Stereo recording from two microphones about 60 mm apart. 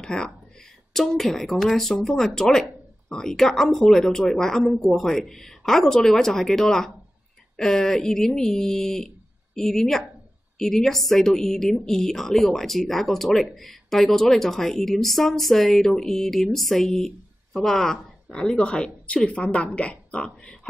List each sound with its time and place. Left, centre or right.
0.0 s a woman's voice: centre